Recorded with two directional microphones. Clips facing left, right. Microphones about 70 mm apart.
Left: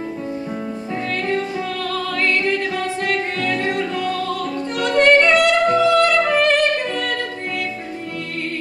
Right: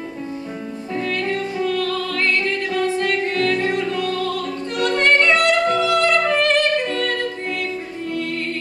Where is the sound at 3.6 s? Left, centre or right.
Centre.